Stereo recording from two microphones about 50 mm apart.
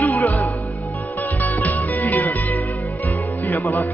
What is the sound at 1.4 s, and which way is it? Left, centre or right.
Music, left.